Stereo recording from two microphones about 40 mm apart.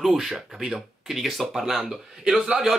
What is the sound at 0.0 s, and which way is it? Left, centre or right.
Speech, centre.